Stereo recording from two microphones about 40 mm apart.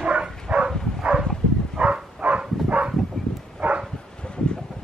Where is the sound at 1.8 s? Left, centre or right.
Right.